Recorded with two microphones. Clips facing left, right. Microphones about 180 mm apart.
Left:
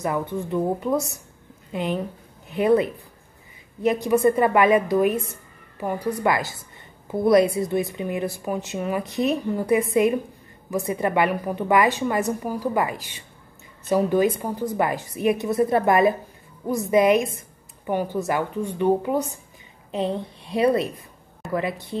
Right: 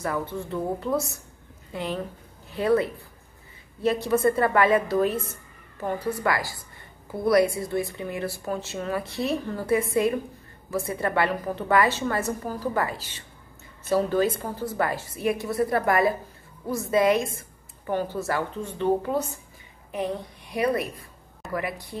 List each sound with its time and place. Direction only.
0.0 s a woman's voice: 20° left (ahead or behind)